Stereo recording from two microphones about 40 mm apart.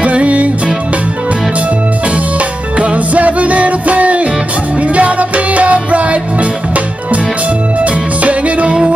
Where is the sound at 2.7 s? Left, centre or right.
Right.